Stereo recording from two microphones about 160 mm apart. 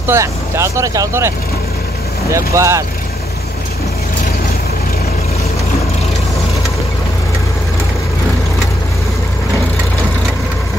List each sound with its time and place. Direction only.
0.0 s speech: 15° right (ahead or behind)
2.3 s speech: 20° right (ahead or behind)